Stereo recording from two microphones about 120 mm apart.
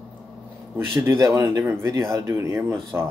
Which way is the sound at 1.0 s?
20° right (ahead or behind).